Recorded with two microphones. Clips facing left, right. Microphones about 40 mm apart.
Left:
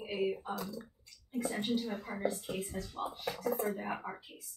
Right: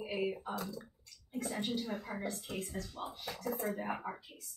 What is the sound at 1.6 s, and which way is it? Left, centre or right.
Speech, centre.